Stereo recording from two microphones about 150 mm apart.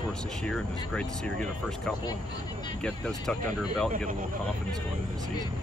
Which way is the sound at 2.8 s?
5° left (ahead or behind).